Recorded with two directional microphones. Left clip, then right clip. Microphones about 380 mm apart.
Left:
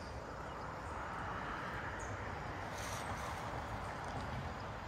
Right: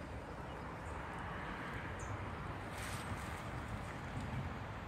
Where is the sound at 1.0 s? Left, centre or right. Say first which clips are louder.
Left 4 dB; left.